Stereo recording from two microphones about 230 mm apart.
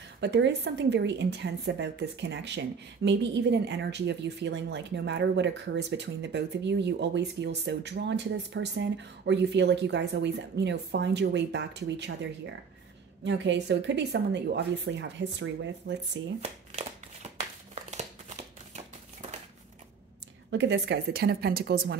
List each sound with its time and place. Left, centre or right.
0.2 s a woman's voice: right
16.3 s a sound: right
20.5 s a woman's voice: right